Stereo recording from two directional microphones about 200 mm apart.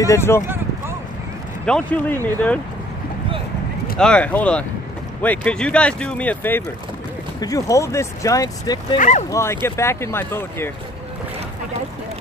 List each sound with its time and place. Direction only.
0.0 s speech: 15° left (ahead or behind)
1.7 s speech: 5° left (ahead or behind)
4.0 s speech: 5° left (ahead or behind)
8.9 s speech: 40° left (ahead or behind)
9.3 s speech: 15° left (ahead or behind)